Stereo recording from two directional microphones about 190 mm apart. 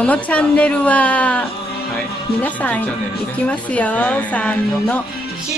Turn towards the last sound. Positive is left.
turn(degrees=5)  # may be behind; listen again after turning